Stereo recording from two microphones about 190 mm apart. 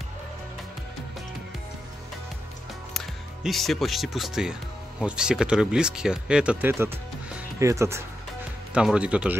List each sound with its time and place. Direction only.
3.4 s speech: centre (ahead or behind)